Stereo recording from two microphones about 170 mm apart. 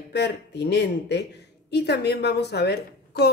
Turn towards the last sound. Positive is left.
turn(degrees=75)  # may be behind; listen again after turning